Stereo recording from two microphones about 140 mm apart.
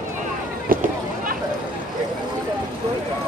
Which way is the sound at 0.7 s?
80° right.